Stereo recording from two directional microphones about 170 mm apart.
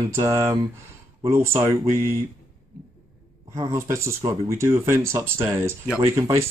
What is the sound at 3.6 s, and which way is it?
Speech, 15° right (ahead or behind).